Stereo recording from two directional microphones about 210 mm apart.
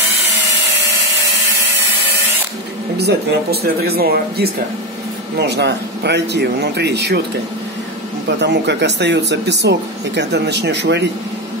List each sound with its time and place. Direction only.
3.6 s a man's voice: 50° right (ahead or behind)
8.3 s speech: 55° right (ahead or behind)